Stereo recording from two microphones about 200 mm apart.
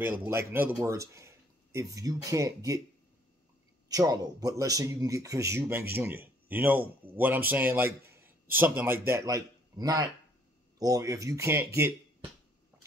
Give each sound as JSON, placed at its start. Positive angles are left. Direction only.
{"t": 0.0, "sound": "speech", "side_deg": -10}
{"t": 3.9, "sound": "a man's voice", "side_deg": -20}